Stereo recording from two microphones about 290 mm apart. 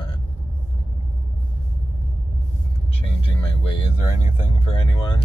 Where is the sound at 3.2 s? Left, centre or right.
Centre.